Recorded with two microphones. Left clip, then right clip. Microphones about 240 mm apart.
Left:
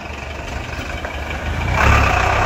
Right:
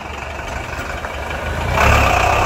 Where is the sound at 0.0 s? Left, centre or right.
Centre.